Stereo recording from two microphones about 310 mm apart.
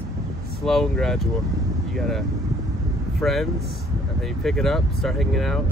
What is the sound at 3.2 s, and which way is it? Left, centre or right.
Speech, centre.